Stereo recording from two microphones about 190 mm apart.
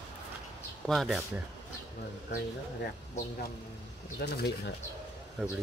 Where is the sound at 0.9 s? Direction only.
Centre (ahead or behind).